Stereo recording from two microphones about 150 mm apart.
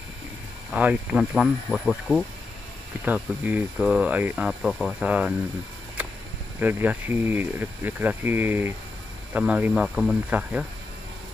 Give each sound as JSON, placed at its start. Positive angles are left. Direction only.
{"t": 0.7, "sound": "speech", "side_deg": -5}
{"t": 3.1, "sound": "speech", "side_deg": -10}
{"t": 4.5, "sound": "speech", "side_deg": 0}
{"t": 6.6, "sound": "speech", "side_deg": -10}